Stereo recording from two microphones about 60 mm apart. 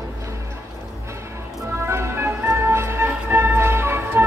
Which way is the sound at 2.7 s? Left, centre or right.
Right.